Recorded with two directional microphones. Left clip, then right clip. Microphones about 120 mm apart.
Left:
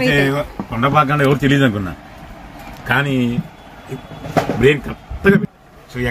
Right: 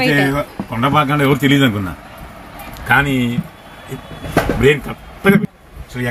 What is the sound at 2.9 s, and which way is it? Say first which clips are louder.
Speech: right 3 dB; 10° left (ahead or behind).